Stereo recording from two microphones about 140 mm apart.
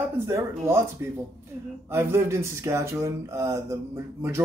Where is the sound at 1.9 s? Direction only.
20° right (ahead or behind).